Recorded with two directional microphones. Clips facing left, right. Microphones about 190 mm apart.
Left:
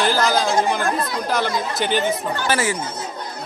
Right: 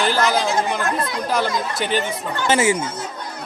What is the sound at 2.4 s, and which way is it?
Speech, 20° right (ahead or behind).